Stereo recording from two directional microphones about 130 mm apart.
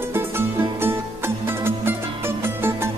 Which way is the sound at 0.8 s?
15° right (ahead or behind).